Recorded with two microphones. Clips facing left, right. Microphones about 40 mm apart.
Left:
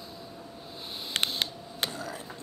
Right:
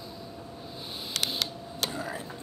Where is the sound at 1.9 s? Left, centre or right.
Centre.